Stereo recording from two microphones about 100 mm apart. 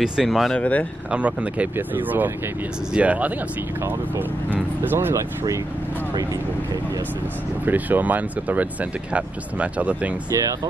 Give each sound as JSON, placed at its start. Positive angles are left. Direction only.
{"t": 0.0, "sound": "speech", "side_deg": -5}
{"t": 0.6, "sound": "speech", "side_deg": 15}
{"t": 1.1, "sound": "speech", "side_deg": -15}
{"t": 4.8, "sound": "speech", "side_deg": -25}
{"t": 7.6, "sound": "speech", "side_deg": -15}